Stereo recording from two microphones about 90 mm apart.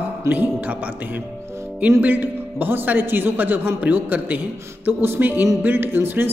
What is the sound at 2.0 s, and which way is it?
A man's voice, 20° right (ahead or behind).